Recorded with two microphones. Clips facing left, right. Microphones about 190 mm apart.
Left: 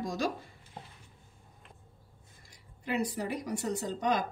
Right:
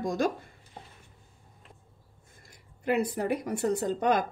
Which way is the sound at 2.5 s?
55° right (ahead or behind).